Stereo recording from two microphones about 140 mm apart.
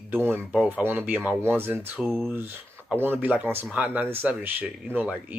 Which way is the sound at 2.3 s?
15° right (ahead or behind).